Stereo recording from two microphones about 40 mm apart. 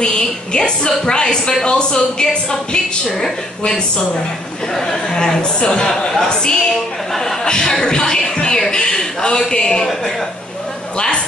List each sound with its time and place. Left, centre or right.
0.0 s a woman's voice: left